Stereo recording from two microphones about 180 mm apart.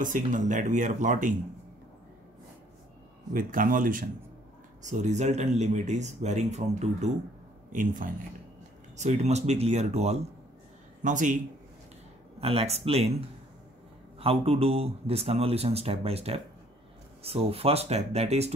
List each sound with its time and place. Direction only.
0.0 s speech: 45° right (ahead or behind)
3.3 s a man's voice: 50° right (ahead or behind)
12.4 s a man's voice: 35° right (ahead or behind)
14.1 s a man's voice: 30° right (ahead or behind)